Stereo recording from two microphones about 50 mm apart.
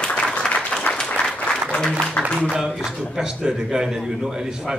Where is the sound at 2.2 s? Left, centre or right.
Centre.